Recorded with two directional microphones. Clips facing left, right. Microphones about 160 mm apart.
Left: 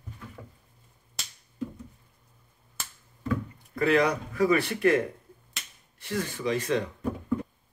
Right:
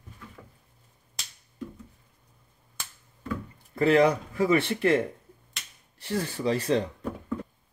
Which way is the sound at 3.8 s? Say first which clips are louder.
Right 3 dB; 30° right (ahead or behind).